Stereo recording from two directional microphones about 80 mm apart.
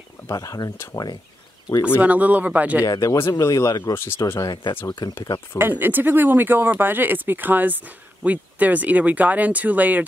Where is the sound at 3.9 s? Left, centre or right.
Left.